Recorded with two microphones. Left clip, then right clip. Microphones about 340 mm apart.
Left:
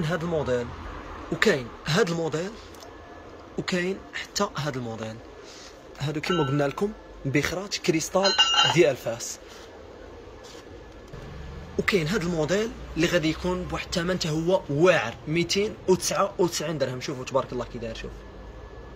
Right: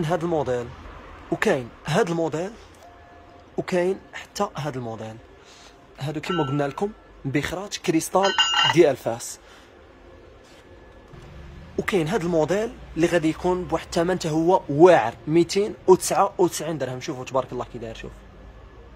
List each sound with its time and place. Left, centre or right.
0.0 s speech: centre
3.5 s speech: centre
11.7 s speech: centre